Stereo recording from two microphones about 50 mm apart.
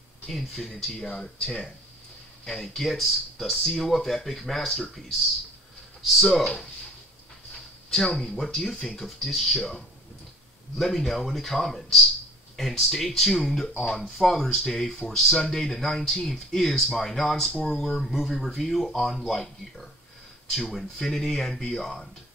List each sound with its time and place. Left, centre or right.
0.3 s speech: centre
0.7 s speech: centre
6.2 s speech: centre
8.1 s speech: centre